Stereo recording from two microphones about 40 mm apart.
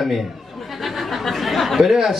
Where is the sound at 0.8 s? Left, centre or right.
Centre.